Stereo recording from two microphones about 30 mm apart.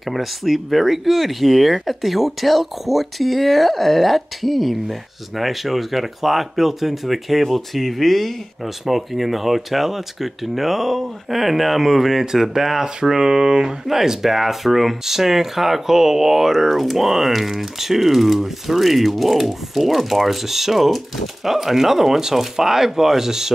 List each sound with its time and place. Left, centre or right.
0.1 s speech: centre
8.8 s speech: centre